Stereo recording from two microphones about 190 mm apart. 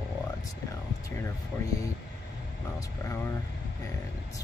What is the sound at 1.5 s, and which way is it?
Speech, 15° left (ahead or behind).